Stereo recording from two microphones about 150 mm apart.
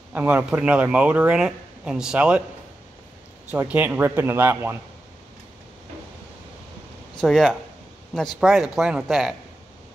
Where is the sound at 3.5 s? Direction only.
10° right (ahead or behind).